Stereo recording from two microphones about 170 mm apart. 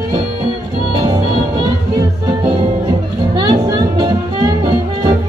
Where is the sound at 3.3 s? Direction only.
20° right (ahead or behind).